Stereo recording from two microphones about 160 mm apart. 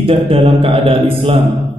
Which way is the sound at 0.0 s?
35° right (ahead or behind).